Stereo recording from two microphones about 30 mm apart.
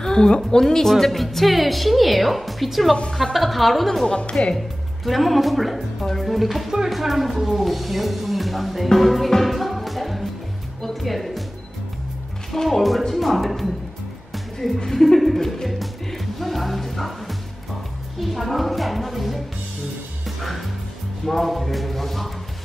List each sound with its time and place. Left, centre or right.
0.0 s music: left
0.5 s speech: centre
0.9 s a woman's voice: centre
4.1 s speech: left
4.6 s a woman's voice: centre
12.6 s a woman's voice: centre
14.9 s speech: centre
15.1 s music: centre
18.2 s a woman's voice: centre
20.2 s music: centre
21.3 s a woman's voice: centre